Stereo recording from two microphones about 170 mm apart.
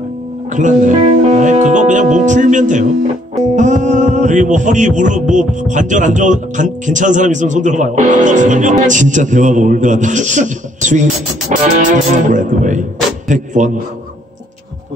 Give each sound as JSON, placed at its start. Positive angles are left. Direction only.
{"t": 0.5, "sound": "speech", "side_deg": -45}